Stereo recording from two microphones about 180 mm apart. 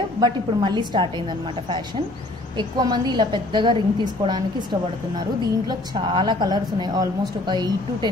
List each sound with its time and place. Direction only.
0.2 s a woman's voice: 25° right (ahead or behind)
2.5 s a woman's voice: 25° right (ahead or behind)
5.7 s a woman's voice: 25° right (ahead or behind)